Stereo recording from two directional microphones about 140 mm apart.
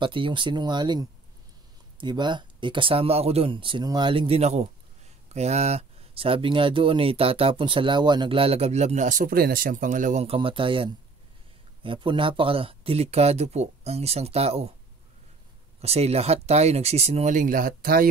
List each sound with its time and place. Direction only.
0.0 s speech: 35° right (ahead or behind); by 10.2 s 65° right (ahead or behind)
10.2 s speech: 40° right (ahead or behind)
15.8 s speech: 50° right (ahead or behind); by 18.0 s 90° right